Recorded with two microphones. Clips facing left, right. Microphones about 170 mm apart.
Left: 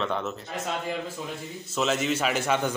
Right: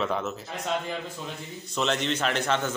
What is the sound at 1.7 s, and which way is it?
A man's voice, 5° left (ahead or behind).